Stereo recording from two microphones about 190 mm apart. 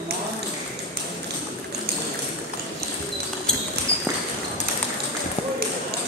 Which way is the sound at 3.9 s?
35° right (ahead or behind).